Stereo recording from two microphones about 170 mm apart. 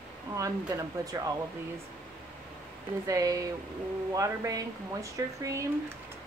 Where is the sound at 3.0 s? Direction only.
20° right (ahead or behind).